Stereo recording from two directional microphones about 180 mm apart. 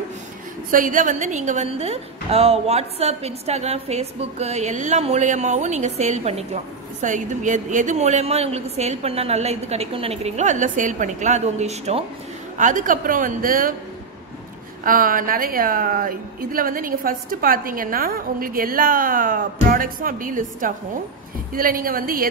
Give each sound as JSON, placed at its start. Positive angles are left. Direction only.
{"t": 0.7, "sound": "a woman's voice", "side_deg": -50}
{"t": 14.8, "sound": "a woman's voice", "side_deg": -50}